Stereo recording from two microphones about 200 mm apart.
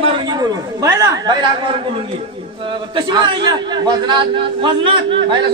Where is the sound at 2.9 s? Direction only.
25° right (ahead or behind).